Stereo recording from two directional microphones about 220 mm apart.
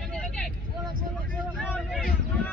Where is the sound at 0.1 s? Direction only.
Centre (ahead or behind).